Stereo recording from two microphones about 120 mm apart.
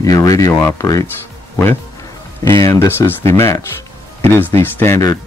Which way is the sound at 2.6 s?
25° left (ahead or behind).